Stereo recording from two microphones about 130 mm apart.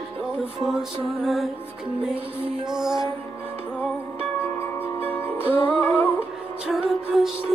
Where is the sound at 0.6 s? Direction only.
Centre (ahead or behind).